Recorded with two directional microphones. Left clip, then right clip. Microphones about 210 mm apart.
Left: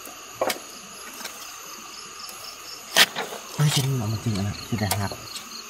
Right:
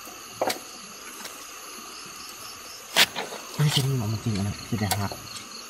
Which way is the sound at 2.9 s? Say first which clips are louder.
Left 2 dB; 20° left (ahead or behind).